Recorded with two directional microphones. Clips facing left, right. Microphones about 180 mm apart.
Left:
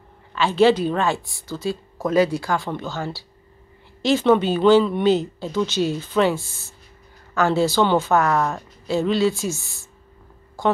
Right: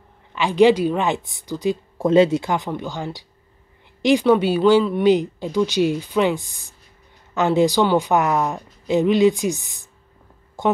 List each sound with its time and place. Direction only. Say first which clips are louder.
0.3 s speech: right 2 dB; 15° right (ahead or behind)